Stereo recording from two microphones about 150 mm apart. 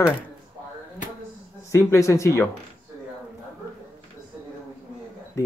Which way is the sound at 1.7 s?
20° left (ahead or behind).